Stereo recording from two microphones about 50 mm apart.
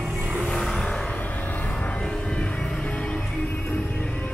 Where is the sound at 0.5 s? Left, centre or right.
Centre.